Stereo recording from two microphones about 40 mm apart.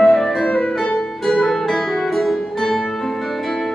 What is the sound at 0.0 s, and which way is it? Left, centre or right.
Music, centre.